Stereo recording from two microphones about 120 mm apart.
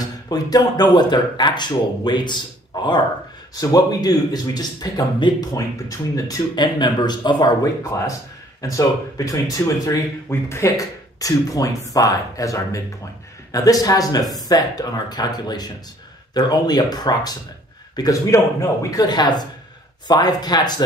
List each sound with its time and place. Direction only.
0.0 s speech: 30° left (ahead or behind)
7.8 s speech: 25° left (ahead or behind)